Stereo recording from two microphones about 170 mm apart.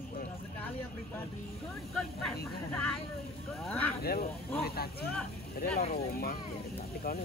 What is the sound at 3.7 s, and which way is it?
Speech, 10° left (ahead or behind).